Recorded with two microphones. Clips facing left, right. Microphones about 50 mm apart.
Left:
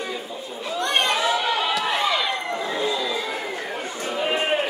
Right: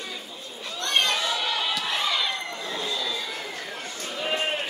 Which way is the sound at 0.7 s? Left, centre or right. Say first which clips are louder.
Left 3 dB; centre.